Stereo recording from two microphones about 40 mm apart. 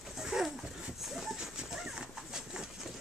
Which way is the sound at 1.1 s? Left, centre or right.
Centre.